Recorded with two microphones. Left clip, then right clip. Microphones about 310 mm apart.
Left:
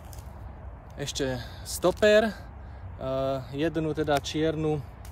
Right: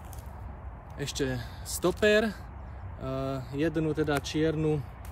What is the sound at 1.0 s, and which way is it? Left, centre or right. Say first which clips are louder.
Speech: left 2 dB; centre.